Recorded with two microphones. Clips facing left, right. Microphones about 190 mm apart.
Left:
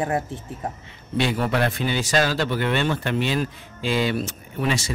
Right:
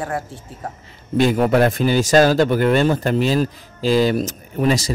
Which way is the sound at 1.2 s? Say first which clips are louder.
Right 7 dB; 45° right (ahead or behind).